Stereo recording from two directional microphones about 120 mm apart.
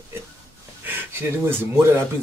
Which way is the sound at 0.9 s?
20° right (ahead or behind).